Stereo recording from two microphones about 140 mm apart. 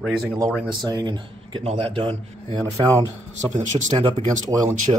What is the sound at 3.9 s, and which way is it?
Speech, 40° right (ahead or behind).